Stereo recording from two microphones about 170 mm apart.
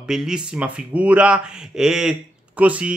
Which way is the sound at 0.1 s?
5° right (ahead or behind).